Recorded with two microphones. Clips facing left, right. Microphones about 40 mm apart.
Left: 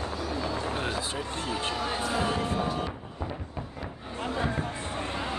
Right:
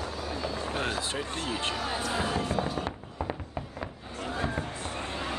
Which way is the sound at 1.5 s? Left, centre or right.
Centre.